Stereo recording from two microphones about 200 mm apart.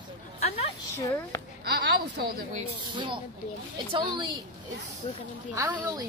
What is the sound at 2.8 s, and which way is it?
A woman's voice, 25° right (ahead or behind).